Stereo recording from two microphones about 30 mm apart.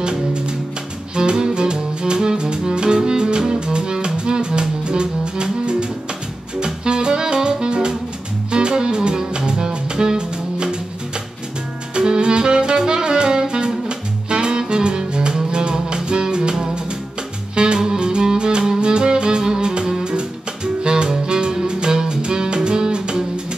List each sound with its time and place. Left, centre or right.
0.0 s music: right
7.3 s saxophone: right
8.5 s music: right
11.9 s saxophone: right
17.7 s music: right